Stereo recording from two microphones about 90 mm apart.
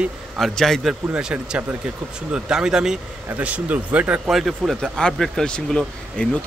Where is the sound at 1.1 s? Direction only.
10° right (ahead or behind).